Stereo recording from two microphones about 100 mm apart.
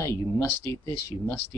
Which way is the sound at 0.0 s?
25° left (ahead or behind).